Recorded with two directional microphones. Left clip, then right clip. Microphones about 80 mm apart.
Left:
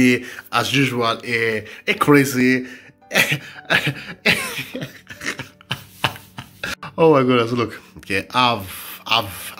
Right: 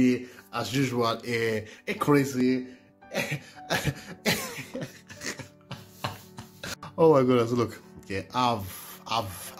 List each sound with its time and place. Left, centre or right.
0.0 s speech: centre
0.7 s speech: right
0.9 s speech: right
1.9 s speech: right
2.3 s a man's voice: centre
3.1 s speech: centre
3.4 s cough: right
4.7 s a sound: right
5.7 s chopping: centre
6.3 s music: right
8.1 s speech: right
9.1 s speech: right